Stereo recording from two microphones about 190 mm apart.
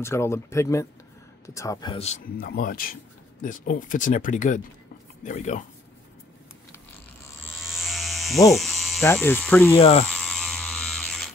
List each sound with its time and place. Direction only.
0.0 s speech: 15° left (ahead or behind); by 5.6 s 40° left (ahead or behind)
7.6 s a sound: centre (ahead or behind)
8.5 s electric shaver: centre (ahead or behind)
9.0 s speech: 10° left (ahead or behind)
9.8 s speech: 30° left (ahead or behind)
10.1 s mechanisms: 5° left (ahead or behind)